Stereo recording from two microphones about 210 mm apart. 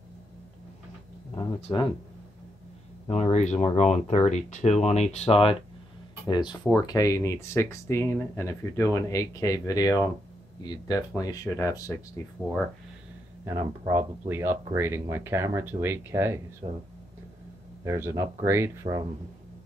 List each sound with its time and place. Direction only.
1.3 s a sound: 20° left (ahead or behind)
3.1 s speech: 30° left (ahead or behind); by 11.9 s 15° left (ahead or behind)
13.5 s speech: 15° right (ahead or behind)
16.6 s speech: 30° right (ahead or behind)
17.8 s speech: 15° right (ahead or behind)